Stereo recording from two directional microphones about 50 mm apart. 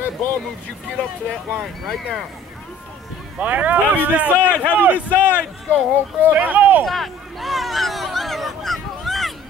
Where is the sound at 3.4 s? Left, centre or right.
Right.